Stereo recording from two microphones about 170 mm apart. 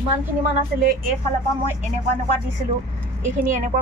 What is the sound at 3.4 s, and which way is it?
Speech, 50° right (ahead or behind).